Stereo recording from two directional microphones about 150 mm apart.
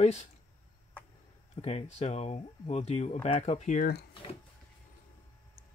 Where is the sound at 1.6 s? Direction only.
45° left (ahead or behind); by 4.1 s 80° left.